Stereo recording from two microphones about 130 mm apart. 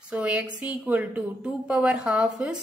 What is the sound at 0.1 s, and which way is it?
A woman's voice, 10° right (ahead or behind).